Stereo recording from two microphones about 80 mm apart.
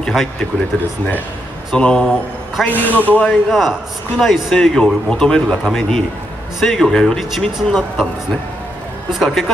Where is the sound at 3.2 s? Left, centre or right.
Centre.